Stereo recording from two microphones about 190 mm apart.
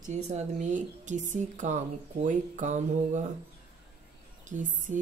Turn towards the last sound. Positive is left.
turn(degrees=-40)  # may be behind; listen again after turning